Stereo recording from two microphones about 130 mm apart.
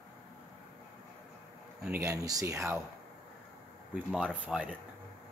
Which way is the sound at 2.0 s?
25° right (ahead or behind).